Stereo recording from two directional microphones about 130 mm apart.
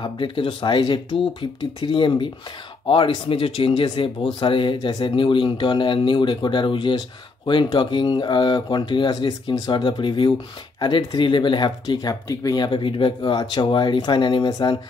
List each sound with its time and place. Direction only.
0.0 s speech: 40° left (ahead or behind)